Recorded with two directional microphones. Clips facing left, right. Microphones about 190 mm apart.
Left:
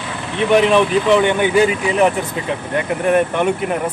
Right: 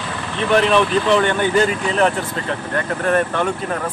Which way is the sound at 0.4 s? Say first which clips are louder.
Left 3 dB; 10° left (ahead or behind).